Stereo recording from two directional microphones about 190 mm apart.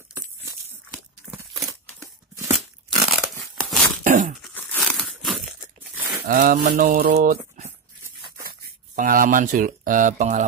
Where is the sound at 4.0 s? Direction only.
45° right (ahead or behind).